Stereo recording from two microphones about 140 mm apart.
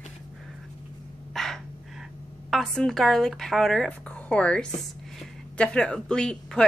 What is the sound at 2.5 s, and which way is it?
A woman's voice, 5° left (ahead or behind).